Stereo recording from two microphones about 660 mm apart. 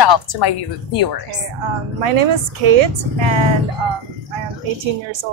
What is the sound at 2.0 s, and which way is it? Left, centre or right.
A woman's voice, right.